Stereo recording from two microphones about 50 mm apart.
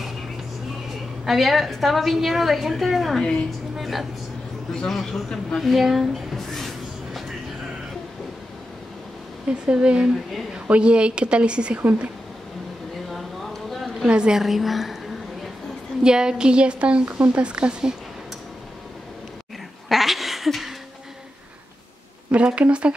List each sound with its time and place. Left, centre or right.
1.2 s a woman's voice: centre
3.7 s a sound: centre
4.8 s speech: centre
5.6 s speech: centre
9.5 s a woman's voice: right
13.1 s a sound: centre
14.0 s a woman's voice: centre
14.4 s a woman's voice: centre
16.0 s a woman's voice: centre
19.9 s a sound: centre
22.3 s a woman's voice: right